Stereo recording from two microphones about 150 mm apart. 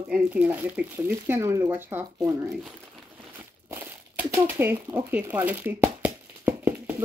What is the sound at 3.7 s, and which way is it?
Speech, 15° right (ahead or behind).